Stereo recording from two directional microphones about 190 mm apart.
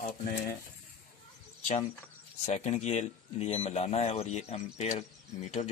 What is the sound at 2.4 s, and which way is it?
Speech, 35° left (ahead or behind).